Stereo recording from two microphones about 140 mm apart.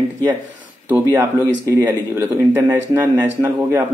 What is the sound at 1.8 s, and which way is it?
Speech, 15° right (ahead or behind).